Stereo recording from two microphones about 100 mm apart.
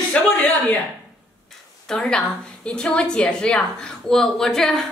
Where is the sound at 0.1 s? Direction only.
15° left (ahead or behind).